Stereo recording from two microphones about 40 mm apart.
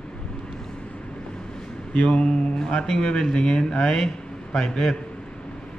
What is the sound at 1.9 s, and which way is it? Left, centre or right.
Speech, left.